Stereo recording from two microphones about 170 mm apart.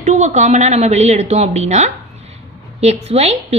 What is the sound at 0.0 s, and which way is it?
A woman's voice, 45° right (ahead or behind).